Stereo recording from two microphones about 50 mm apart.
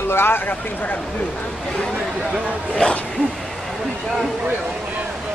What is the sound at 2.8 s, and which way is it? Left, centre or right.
Speech, left.